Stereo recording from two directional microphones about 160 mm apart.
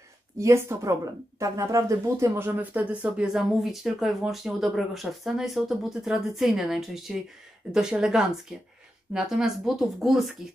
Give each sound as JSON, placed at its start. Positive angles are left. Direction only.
{"t": 0.4, "sound": "speech", "side_deg": -20}